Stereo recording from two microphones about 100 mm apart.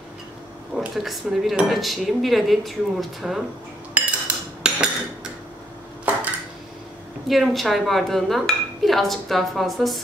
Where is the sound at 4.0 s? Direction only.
15° right (ahead or behind).